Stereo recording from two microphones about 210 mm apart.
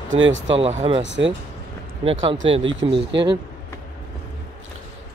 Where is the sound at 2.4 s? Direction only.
25° right (ahead or behind).